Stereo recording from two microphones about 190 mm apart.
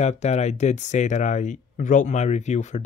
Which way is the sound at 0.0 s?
35° left (ahead or behind).